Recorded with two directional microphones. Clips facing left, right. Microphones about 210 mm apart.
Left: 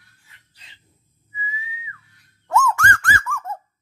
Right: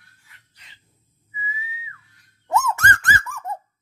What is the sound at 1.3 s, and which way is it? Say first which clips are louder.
Whistling: even; 5° right (ahead or behind).